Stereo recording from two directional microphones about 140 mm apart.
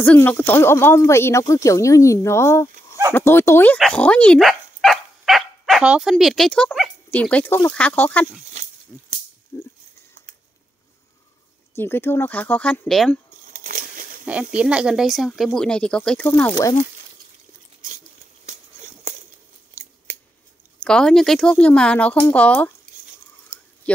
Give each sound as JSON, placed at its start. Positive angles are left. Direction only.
{"t": 0.0, "sound": "speech", "side_deg": 10}
{"t": 8.6, "sound": "pig", "side_deg": -50}
{"t": 9.5, "sound": "speech", "side_deg": 20}
{"t": 11.7, "sound": "speech", "side_deg": 15}
{"t": 13.5, "sound": "a sound", "side_deg": -75}
{"t": 14.2, "sound": "speech", "side_deg": -10}
{"t": 20.8, "sound": "speech", "side_deg": 5}